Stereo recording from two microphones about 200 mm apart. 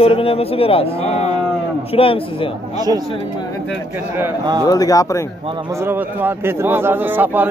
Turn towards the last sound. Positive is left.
turn(degrees=-10)  # may be behind; listen again after turning